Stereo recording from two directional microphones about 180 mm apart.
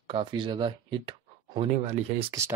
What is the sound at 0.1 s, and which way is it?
Speech, 25° right (ahead or behind).